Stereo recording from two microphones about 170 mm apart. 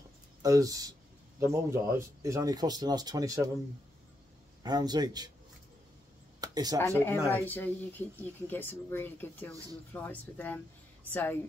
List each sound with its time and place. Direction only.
0.4 s speech: 20° right (ahead or behind)
4.6 s speech: 25° right (ahead or behind)
6.4 s a sound: 20° right (ahead or behind)
6.8 s speech: 15° left (ahead or behind)